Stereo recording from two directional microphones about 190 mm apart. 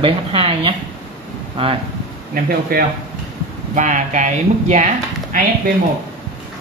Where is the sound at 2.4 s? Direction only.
50° right (ahead or behind).